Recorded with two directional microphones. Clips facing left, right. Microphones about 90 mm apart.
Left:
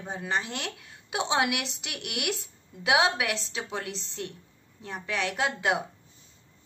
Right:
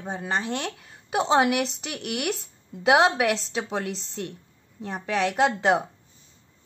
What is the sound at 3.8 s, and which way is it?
Speech, centre (ahead or behind).